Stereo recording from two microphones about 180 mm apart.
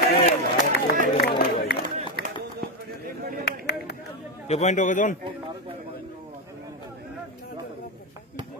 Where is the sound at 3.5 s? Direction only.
65° left (ahead or behind).